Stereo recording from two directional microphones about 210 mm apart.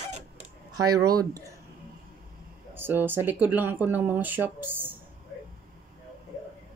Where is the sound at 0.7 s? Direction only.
15° right (ahead or behind).